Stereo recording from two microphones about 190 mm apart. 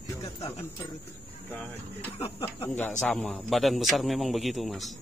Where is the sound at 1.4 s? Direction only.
10° left (ahead or behind).